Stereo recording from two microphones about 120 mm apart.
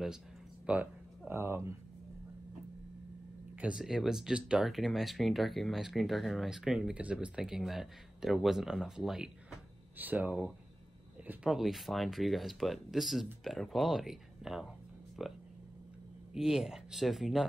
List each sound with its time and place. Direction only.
0.7 s speech: 15° right (ahead or behind)
3.5 s speech: 10° right (ahead or behind)
9.9 s speech: 15° right (ahead or behind)
16.3 s speech: 5° right (ahead or behind)